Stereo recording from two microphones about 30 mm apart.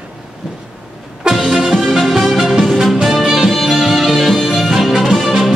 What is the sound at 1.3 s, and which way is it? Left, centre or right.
Music, centre.